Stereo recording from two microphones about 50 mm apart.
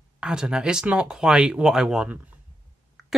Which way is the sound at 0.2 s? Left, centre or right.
Centre.